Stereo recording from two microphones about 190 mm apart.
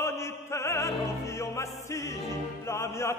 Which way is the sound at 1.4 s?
15° left (ahead or behind).